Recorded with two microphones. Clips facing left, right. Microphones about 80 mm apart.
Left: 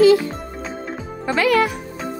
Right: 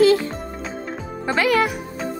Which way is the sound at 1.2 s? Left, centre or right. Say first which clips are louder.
Left 1 dB; centre.